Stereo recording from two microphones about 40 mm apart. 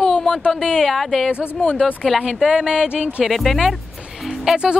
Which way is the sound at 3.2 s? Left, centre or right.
Centre.